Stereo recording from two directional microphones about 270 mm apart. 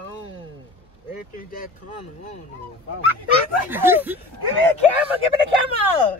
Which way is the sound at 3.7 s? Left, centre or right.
Centre.